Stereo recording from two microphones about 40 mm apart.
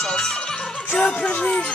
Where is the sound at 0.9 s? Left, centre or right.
Left.